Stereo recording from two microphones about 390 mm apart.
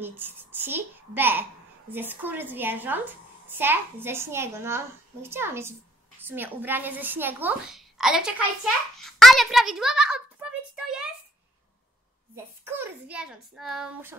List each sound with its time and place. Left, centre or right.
0.0 s a child's voice: centre
10.8 s a sound: centre
12.6 s a child's voice: centre